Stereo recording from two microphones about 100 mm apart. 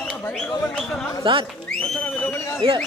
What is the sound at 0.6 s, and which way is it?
Speech, 5° left (ahead or behind).